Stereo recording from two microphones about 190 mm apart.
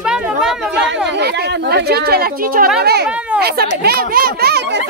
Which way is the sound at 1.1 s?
60° right (ahead or behind).